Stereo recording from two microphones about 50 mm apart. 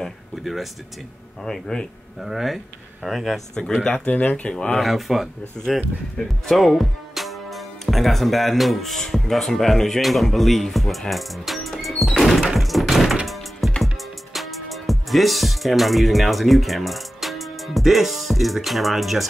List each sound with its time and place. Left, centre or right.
0.4 s speech: centre
1.4 s speech: centre
2.2 s speech: centre
3.8 s speech: left
4.7 s speech: centre
6.1 s music: centre